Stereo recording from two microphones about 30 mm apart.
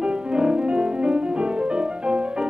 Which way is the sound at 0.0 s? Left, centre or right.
Right.